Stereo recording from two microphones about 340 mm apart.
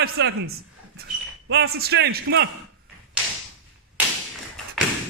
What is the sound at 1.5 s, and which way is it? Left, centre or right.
Speech, right.